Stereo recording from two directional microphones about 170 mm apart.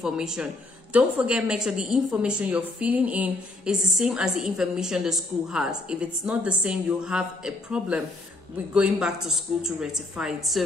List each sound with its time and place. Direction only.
0.0 s a woman's voice: 5° right (ahead or behind)